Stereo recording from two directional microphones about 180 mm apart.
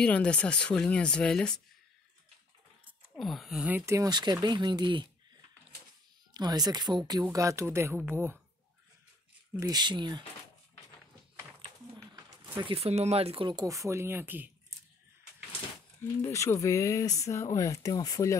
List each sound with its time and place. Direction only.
0.0 s speech: 5° left (ahead or behind)
3.2 s speech: centre (ahead or behind); by 5.0 s 25° right (ahead or behind)
6.3 s speech: 20° right (ahead or behind)
9.6 s speech: 20° right (ahead or behind)
11.6 s a sound: 25° right (ahead or behind)
12.5 s speech: 30° right (ahead or behind); by 14.5 s 10° right (ahead or behind)
16.0 s speech: 15° left (ahead or behind)